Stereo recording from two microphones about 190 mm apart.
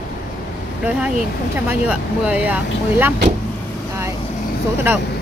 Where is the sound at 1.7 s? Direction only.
5° right (ahead or behind).